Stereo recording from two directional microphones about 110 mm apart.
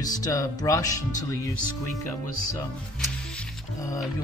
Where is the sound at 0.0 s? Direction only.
35° left (ahead or behind).